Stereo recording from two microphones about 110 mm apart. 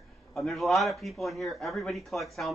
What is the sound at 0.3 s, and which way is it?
A man's voice, centre (ahead or behind).